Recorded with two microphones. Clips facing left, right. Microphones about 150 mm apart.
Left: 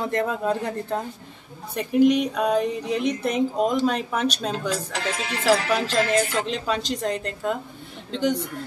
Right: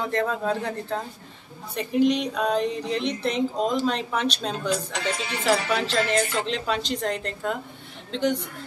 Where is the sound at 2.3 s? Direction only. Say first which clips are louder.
Left 2 dB; 5° left (ahead or behind).